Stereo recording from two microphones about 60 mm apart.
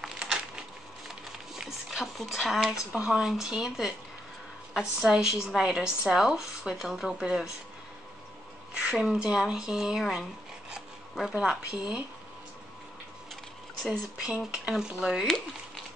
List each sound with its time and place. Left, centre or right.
0.2 s a sound: centre
1.6 s speech: centre
8.9 s speech: centre
11.3 s speech: centre
14.3 s speech: right